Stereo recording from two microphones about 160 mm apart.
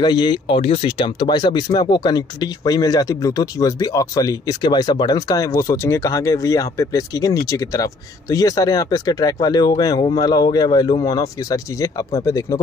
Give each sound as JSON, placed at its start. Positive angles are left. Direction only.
{"t": 0.0, "sound": "speech", "side_deg": 30}